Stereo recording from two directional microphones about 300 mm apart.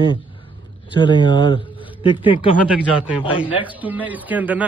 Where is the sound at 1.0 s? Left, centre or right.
Centre.